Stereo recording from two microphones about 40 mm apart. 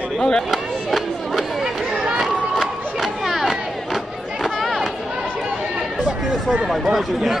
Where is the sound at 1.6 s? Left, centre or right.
Right.